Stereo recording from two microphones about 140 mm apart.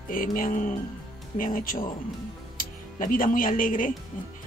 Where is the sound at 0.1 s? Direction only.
85° left.